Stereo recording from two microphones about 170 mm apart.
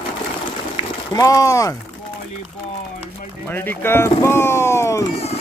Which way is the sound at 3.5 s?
15° left (ahead or behind).